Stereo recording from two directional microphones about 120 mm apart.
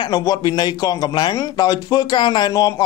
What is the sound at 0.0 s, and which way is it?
Speech, 30° left (ahead or behind).